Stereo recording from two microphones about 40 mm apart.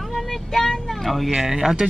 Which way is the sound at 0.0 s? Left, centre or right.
Centre.